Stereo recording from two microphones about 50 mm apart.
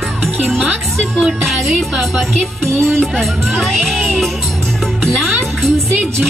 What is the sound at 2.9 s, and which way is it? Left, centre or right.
Speech, centre.